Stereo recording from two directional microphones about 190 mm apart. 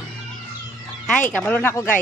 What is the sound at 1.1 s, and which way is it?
Speech, 5° left (ahead or behind).